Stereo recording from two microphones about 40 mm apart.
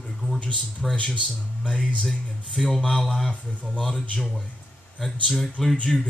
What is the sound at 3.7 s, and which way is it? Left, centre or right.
Speech, left.